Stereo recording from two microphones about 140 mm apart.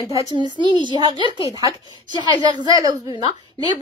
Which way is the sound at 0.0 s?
30° right (ahead or behind).